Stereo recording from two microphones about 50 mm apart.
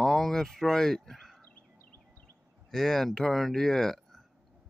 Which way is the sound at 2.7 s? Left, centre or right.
Centre.